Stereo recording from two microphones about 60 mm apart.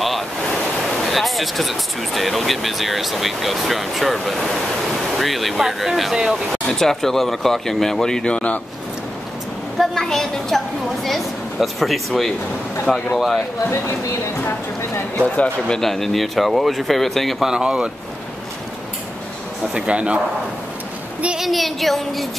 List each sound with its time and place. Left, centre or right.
1.0 s speech: centre
6.7 s speech: centre
9.8 s speech: centre
15.2 s speech: left
15.8 s speech: centre
17.5 s speech: centre
19.7 s speech: centre
21.4 s speech: centre